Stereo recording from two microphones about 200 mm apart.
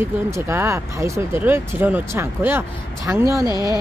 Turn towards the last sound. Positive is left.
turn(degrees=20)  # may be behind; listen again after turning